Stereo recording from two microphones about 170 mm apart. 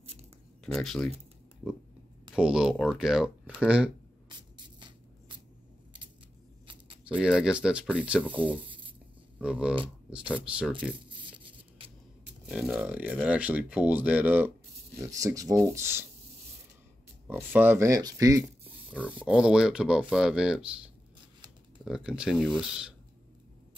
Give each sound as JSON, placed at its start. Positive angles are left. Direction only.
{"t": 0.0, "sound": "a sound", "side_deg": -40}
{"t": 0.7, "sound": "speech", "side_deg": 0}
{"t": 4.3, "sound": "music", "side_deg": -25}
{"t": 7.1, "sound": "speech", "side_deg": -5}
{"t": 10.9, "sound": "a sound", "side_deg": -30}
{"t": 12.4, "sound": "speech", "side_deg": -5}
{"t": 15.0, "sound": "speech", "side_deg": -20}
{"t": 17.3, "sound": "speech", "side_deg": -10}
{"t": 18.9, "sound": "speech", "side_deg": -10}